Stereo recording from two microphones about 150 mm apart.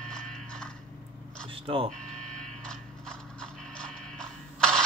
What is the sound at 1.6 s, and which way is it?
Speech, 40° right (ahead or behind).